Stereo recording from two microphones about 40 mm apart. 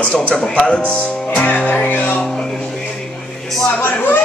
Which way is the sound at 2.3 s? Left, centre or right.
Centre.